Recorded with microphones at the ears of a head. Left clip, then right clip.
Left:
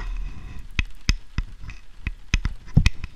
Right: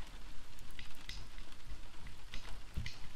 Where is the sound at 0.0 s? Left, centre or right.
Left.